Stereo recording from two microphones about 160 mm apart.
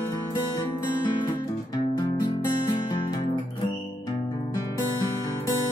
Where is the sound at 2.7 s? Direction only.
30° left (ahead or behind).